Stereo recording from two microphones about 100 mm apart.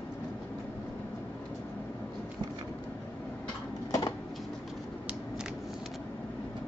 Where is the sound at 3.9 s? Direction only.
40° left (ahead or behind).